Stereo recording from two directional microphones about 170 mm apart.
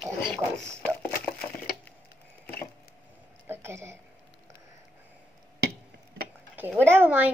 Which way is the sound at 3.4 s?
15° right (ahead or behind).